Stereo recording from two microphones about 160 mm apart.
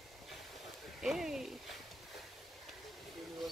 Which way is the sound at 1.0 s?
5° right (ahead or behind).